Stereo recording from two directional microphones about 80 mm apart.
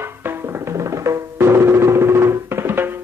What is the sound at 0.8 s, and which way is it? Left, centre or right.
Music, right.